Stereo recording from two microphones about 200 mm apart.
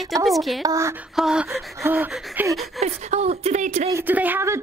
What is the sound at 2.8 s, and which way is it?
Speech, 35° right (ahead or behind).